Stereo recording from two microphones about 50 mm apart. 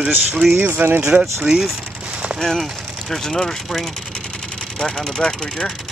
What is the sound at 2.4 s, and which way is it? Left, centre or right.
Speech, centre.